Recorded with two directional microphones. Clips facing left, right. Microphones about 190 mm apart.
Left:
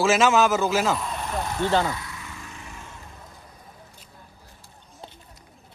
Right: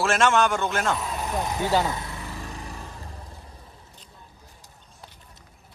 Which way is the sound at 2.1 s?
35° right (ahead or behind).